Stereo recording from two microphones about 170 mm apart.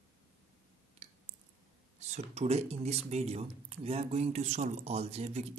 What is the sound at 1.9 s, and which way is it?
Speech, 40° right (ahead or behind).